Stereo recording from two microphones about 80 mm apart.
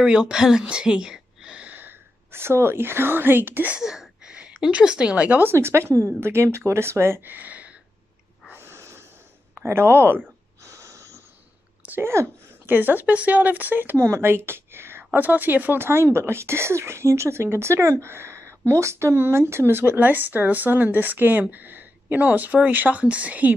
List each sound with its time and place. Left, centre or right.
0.0 s speech: centre
3.7 s a woman's voice: centre
8.5 s snort: right
9.7 s speech: right
10.7 s wheeze: right
11.8 s a sound: right
12.1 s a woman's voice: right